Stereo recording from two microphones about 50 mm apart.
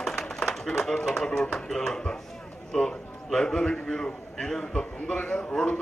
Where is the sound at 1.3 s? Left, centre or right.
Centre.